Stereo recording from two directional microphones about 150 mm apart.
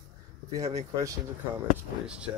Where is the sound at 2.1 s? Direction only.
5° right (ahead or behind).